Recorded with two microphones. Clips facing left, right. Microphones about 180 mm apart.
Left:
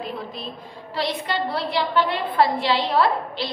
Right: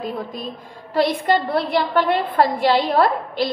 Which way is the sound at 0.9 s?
50° right (ahead or behind).